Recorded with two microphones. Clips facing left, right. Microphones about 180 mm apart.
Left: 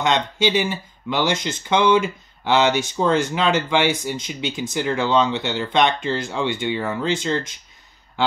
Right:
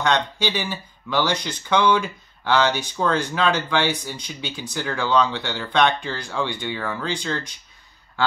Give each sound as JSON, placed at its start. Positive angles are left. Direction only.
{"t": 0.0, "sound": "speech", "side_deg": 20}